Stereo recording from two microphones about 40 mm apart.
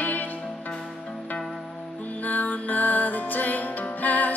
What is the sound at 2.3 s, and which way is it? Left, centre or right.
Music, left.